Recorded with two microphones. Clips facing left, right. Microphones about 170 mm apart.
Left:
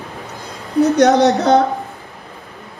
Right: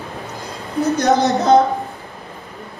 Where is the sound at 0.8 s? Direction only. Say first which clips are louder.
Left 5 dB; 65° left (ahead or behind).